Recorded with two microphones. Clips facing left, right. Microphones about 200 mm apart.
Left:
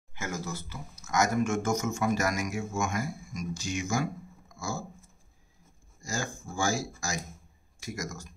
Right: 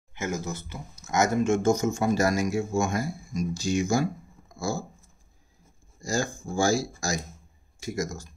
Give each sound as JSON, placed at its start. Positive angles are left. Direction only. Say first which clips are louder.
{"t": 0.1, "sound": "speech", "louder": "right 5 dB", "side_deg": -20}
{"t": 4.6, "sound": "a sound", "louder": "right 6 dB", "side_deg": -35}
{"t": 5.9, "sound": "speech", "louder": "right 6 dB", "side_deg": -35}